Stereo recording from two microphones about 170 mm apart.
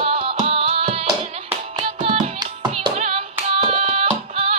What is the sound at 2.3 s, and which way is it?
Music, 25° right (ahead or behind).